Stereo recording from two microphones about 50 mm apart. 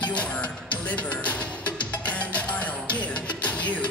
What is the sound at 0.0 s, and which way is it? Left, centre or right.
Music, left.